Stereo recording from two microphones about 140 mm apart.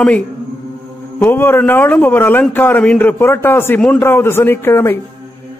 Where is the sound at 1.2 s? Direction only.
15° left (ahead or behind).